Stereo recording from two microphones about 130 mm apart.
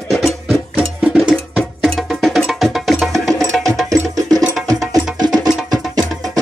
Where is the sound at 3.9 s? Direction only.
30° right (ahead or behind).